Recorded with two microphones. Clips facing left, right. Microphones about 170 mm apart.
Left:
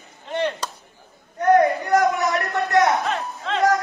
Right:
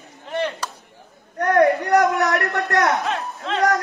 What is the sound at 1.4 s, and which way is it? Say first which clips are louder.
A man's voice: even; 70° right (ahead or behind).